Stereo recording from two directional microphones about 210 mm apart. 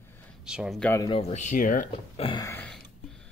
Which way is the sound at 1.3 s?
40° left (ahead or behind).